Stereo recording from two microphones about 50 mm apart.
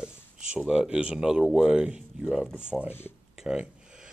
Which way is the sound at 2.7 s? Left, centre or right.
Left.